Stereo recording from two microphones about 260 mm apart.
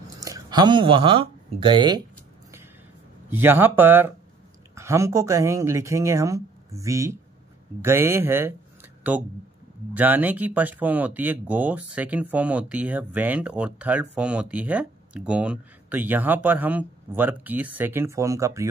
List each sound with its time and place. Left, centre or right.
0.2 s speech: centre
3.3 s speech: centre